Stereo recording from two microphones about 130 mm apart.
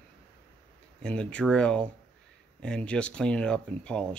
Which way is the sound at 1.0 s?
5° left (ahead or behind).